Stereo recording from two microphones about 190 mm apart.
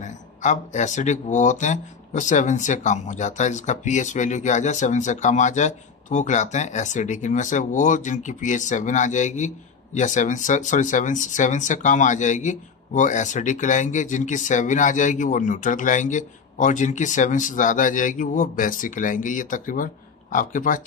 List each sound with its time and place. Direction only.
0.0 s speech: 40° left (ahead or behind)